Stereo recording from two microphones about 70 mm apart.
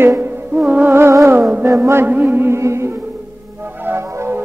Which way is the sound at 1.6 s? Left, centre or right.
Right.